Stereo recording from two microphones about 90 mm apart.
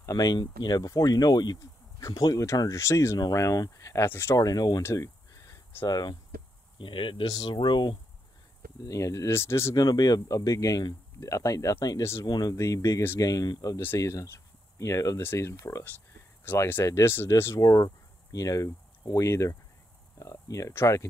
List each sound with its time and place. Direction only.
0.0 s speech: 40° left (ahead or behind)
4.4 s speech: 45° left (ahead or behind)
4.8 s a sound: 35° left (ahead or behind)
5.9 s speech: 50° left (ahead or behind)
6.8 s speech: 70° left (ahead or behind)
7.2 s speech: 45° left (ahead or behind)
7.5 s speech: 60° left (ahead or behind)
8.8 s speech: 40° left (ahead or behind)
9.8 s speech: 45° left (ahead or behind)
12.3 s speech: 45° left (ahead or behind)